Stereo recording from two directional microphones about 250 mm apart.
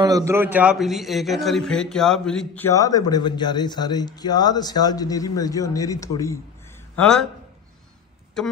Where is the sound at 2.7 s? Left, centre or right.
Centre.